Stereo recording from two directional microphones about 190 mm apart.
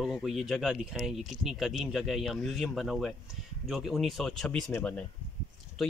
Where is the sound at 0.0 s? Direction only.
Centre (ahead or behind).